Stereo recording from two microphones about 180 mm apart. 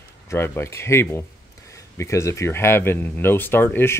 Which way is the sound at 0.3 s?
15° left (ahead or behind).